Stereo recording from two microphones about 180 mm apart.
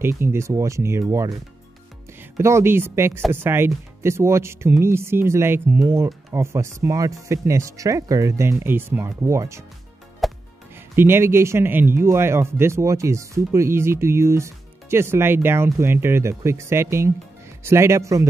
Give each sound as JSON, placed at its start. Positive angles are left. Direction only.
{"t": 0.0, "sound": "speech", "side_deg": -15}
{"t": 10.2, "sound": "music", "side_deg": 0}
{"t": 11.0, "sound": "speech", "side_deg": -15}